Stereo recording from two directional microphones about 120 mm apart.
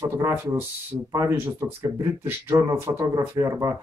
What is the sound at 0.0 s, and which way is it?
Speech, 25° right (ahead or behind).